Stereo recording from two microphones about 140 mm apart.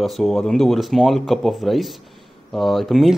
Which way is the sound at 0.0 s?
Centre (ahead or behind).